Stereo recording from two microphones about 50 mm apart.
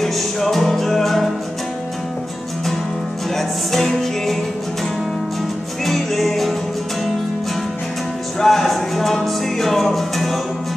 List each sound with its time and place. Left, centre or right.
0.0 s music: centre
3.3 s music: centre
5.9 s music: centre
8.4 s music: centre